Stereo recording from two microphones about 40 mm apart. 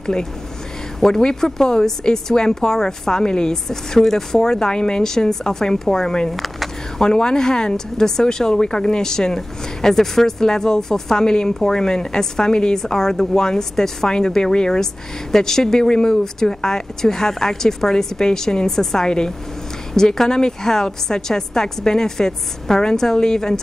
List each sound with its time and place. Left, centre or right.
0.0 s speech: centre
6.3 s a sound: centre
7.0 s speech: centre